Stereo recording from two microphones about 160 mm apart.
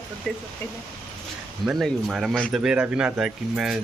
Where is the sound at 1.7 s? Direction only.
Centre (ahead or behind).